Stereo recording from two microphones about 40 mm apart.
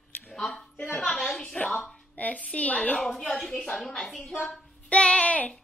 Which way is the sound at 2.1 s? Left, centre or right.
Left.